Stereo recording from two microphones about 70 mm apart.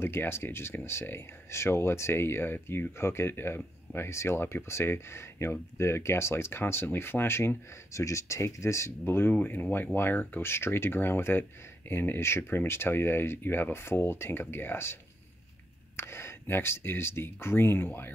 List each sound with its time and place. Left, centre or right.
0.0 s speech: left
16.0 s speech: left